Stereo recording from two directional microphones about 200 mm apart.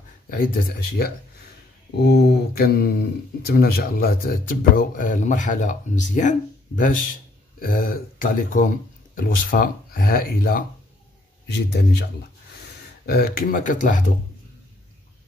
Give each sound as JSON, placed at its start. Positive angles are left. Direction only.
{"t": 0.3, "sound": "speech", "side_deg": 45}
{"t": 7.5, "sound": "speech", "side_deg": 45}
{"t": 13.0, "sound": "speech", "side_deg": 50}